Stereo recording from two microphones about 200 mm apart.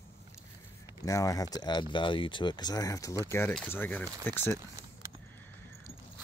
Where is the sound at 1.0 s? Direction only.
15° left (ahead or behind).